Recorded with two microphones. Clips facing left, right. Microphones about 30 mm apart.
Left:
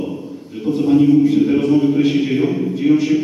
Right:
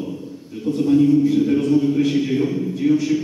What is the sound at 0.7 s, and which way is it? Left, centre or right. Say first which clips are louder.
A man's voice: left 3 dB; left.